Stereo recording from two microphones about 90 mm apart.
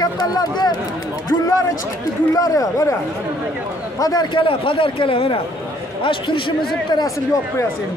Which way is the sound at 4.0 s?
45° left (ahead or behind).